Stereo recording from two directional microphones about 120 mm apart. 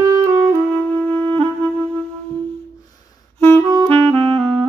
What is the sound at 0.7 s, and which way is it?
Music, 20° left (ahead or behind).